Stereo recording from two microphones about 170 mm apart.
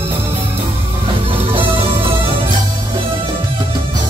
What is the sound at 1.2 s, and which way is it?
Music, 30° right (ahead or behind).